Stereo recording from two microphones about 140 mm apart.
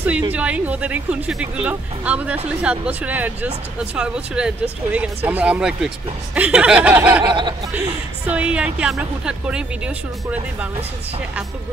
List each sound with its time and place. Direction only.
0.3 s speech: 10° right (ahead or behind)
7.2 s speech: 35° right (ahead or behind)
8.3 s speech: 10° right (ahead or behind)